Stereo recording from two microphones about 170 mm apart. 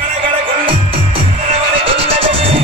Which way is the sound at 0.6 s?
30° right (ahead or behind).